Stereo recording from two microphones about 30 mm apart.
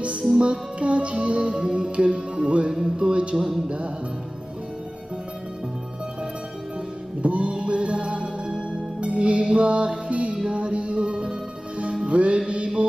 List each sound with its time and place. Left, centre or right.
0.4 s music: right
3.3 s music: centre
3.6 s music: right
7.2 s music: right